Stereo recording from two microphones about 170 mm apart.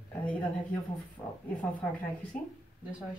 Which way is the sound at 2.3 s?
55° left (ahead or behind).